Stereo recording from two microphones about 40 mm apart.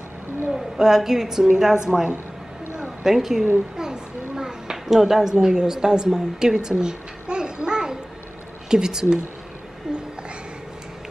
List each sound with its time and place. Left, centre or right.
0.5 s a woman's voice: centre
3.0 s a woman's voice: centre
3.7 s a sound: centre
5.3 s a woman's voice: centre
6.8 s babbling: right
8.6 s a woman's voice: centre
9.9 s a sound: centre